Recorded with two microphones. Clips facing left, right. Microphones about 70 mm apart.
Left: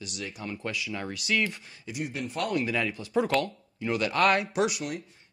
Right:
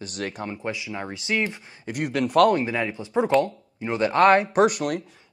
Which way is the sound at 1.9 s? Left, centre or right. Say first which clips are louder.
Right 9 dB; right.